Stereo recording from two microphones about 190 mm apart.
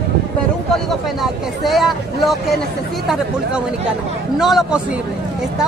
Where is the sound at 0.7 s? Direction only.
Centre (ahead or behind).